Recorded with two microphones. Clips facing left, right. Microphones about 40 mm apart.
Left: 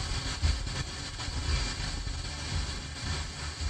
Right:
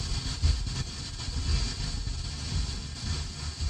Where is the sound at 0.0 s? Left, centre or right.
Left.